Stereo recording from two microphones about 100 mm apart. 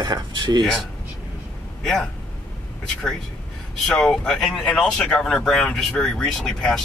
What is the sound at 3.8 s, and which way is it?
Speech, 5° left (ahead or behind).